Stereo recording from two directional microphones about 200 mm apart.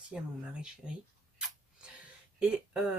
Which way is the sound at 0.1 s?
5° right (ahead or behind).